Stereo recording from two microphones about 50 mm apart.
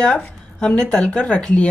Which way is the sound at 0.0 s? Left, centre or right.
Centre.